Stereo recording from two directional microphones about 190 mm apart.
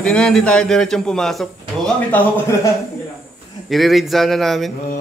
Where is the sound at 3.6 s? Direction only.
Centre (ahead or behind).